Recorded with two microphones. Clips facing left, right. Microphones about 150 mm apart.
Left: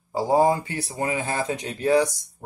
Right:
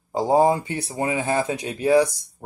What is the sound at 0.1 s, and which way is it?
Speech, 20° right (ahead or behind).